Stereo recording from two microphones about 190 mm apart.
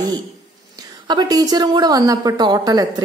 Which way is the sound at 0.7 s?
20° right (ahead or behind).